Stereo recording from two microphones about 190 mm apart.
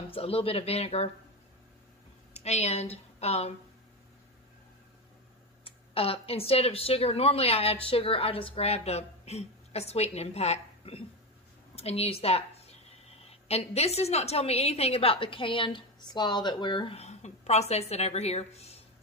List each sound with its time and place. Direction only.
0.1 s speech: 30° left (ahead or behind)
2.3 s speech: 35° left (ahead or behind)
5.6 s speech: 30° left (ahead or behind)